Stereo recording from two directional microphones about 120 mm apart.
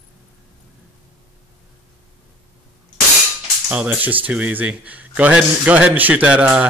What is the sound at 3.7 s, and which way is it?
Speech, 10° right (ahead or behind).